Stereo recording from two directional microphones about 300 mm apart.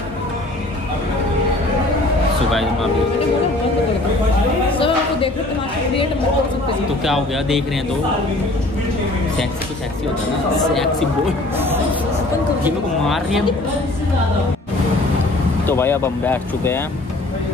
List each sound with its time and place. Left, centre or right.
4.7 s a sound: centre
7.1 s speech: centre
10.7 s speech: centre
11.5 s hubbub: centre
12.6 s speech: centre
15.6 s speech: centre